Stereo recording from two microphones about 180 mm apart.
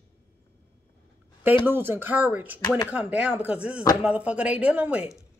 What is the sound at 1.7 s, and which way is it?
Speech, 10° right (ahead or behind).